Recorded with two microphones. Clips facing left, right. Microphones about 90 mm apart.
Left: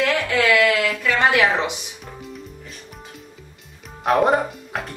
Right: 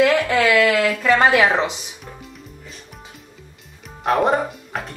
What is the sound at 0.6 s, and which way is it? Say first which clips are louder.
Speech: right 2 dB; 35° right (ahead or behind).